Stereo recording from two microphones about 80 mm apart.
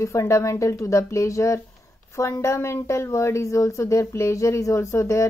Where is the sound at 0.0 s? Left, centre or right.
Left.